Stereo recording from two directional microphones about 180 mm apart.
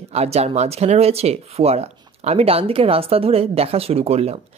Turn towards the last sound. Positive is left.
turn(degrees=-35)  # may be behind; listen again after turning